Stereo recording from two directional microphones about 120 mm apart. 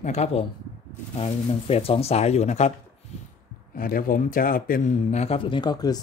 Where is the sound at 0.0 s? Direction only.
65° left (ahead or behind).